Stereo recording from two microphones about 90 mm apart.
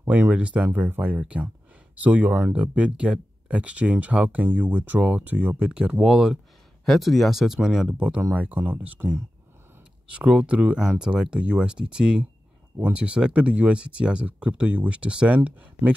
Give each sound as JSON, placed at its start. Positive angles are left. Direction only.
{"t": 0.1, "sound": "speech", "side_deg": -15}
{"t": 8.2, "sound": "speech", "side_deg": -20}